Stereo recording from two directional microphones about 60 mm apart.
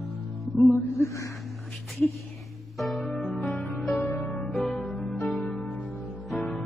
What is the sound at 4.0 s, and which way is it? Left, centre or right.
Music, left.